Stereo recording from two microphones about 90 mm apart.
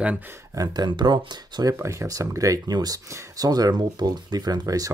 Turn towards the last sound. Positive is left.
turn(degrees=-45)  # may be behind; listen again after turning